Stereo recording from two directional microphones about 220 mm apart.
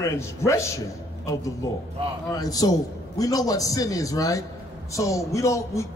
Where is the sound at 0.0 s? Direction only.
15° left (ahead or behind).